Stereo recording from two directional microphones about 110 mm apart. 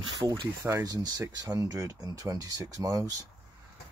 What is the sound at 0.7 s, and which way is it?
Speech, 30° right (ahead or behind).